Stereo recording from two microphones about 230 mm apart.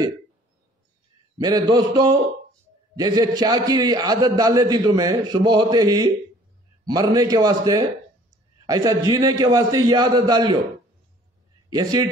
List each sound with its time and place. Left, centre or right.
1.4 s a man's voice: centre
11.7 s a man's voice: centre